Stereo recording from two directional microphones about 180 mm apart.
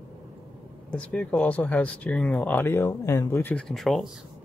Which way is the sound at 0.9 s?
5° left (ahead or behind).